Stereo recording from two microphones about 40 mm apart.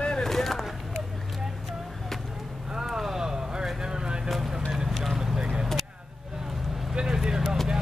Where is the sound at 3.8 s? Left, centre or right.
Centre.